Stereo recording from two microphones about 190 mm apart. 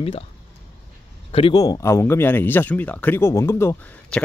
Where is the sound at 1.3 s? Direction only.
30° left (ahead or behind).